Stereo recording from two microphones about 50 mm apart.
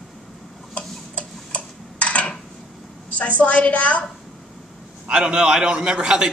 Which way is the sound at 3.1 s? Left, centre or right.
Left.